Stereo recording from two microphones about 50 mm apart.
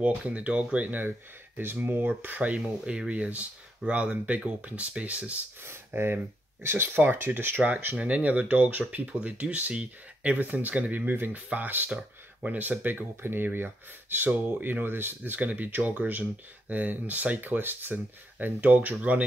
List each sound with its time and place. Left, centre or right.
0.0 s speech: right
5.9 s speech: right
11.1 s speech: right